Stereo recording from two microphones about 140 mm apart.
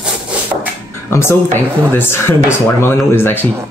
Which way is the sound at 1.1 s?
20° left (ahead or behind).